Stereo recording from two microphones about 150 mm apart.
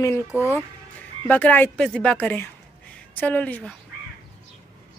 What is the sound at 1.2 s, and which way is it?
A woman's voice, 10° left (ahead or behind).